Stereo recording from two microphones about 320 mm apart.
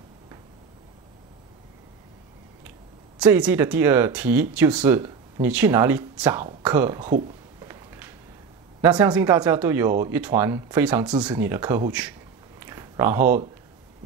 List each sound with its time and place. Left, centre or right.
3.2 s speech: centre
7.1 s speech: right
7.6 s a sound: centre
8.8 s speech: centre